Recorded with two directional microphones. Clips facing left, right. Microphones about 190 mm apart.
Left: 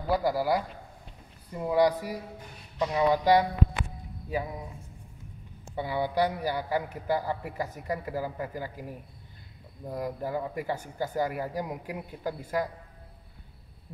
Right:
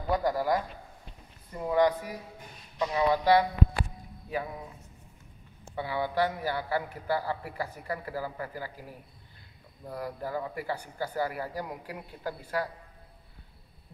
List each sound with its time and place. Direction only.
0.1 s a man's voice: 10° left (ahead or behind)
5.8 s a man's voice: 15° left (ahead or behind)
9.8 s a man's voice: 20° left (ahead or behind)